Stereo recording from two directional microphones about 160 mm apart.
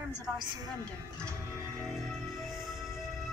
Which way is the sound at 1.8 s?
Centre (ahead or behind).